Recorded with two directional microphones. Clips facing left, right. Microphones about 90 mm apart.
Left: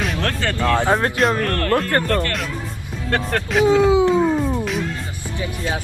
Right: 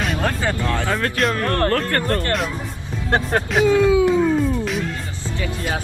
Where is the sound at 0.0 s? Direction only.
5° right (ahead or behind).